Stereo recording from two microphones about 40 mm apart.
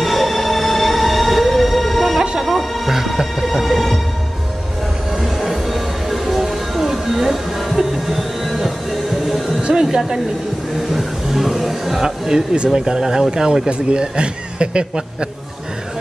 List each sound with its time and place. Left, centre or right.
0.0 s music: centre
5.2 s music: centre
9.6 s a sound: right
10.9 s speech: centre
13.7 s speech: right